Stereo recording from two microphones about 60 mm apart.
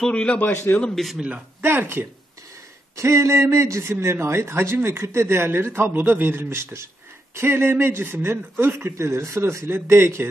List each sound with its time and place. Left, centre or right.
0.1 s a man's voice: centre
0.4 s a man's voice: left
1.0 s speech: centre
1.6 s speech: right
3.0 s a man's voice: right